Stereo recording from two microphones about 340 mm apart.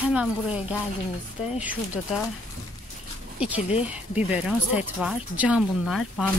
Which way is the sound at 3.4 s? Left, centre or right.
Centre.